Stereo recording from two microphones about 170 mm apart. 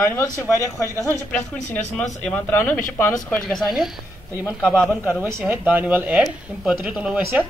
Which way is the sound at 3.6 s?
Centre (ahead or behind).